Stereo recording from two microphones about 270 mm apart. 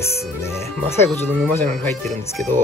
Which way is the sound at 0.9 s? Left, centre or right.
Centre.